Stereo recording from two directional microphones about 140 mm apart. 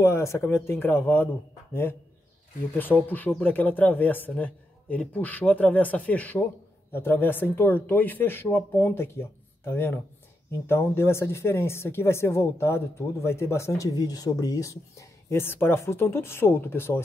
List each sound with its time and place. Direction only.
0.0 s speech: 20° left (ahead or behind)